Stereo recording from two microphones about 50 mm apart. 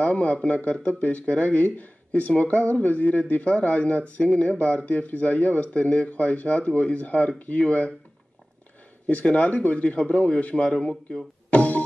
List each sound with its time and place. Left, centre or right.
0.0 s speech: left
9.0 s speech: left